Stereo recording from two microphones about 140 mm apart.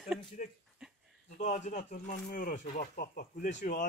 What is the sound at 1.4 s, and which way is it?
Speech, 60° left (ahead or behind).